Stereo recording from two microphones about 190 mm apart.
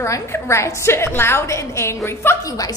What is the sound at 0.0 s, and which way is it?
A woman's voice, 15° left (ahead or behind).